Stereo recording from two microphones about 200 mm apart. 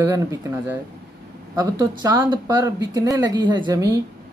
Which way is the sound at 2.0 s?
20° right (ahead or behind).